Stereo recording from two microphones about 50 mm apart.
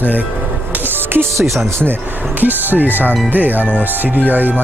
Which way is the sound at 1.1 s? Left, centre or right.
Right.